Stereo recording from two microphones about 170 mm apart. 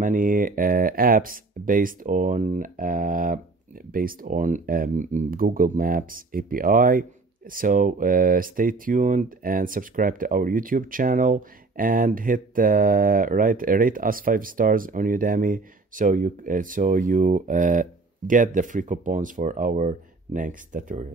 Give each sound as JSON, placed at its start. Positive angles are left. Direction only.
{"t": 0.0, "sound": "speech", "side_deg": -50}